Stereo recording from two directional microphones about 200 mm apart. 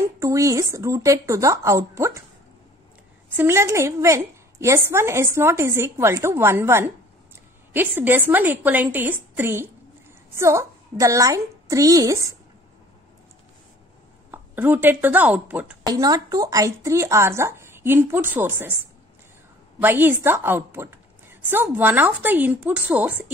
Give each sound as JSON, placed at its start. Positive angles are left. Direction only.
{"t": 0.0, "sound": "a woman's voice", "side_deg": -15}
{"t": 3.3, "sound": "a woman's voice", "side_deg": -15}
{"t": 14.3, "sound": "a woman's voice", "side_deg": -10}
{"t": 19.8, "sound": "a woman's voice", "side_deg": -10}